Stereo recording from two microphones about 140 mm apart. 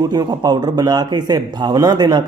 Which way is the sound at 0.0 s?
30° right (ahead or behind).